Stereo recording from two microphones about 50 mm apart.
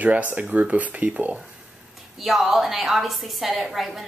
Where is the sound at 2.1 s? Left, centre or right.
Centre.